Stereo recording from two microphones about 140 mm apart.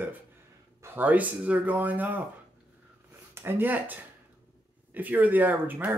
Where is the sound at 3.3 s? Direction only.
15° right (ahead or behind).